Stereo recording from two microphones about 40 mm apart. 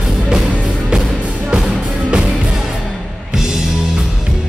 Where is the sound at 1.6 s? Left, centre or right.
Centre.